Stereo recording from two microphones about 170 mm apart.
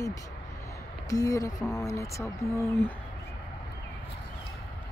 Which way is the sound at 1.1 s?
20° left (ahead or behind).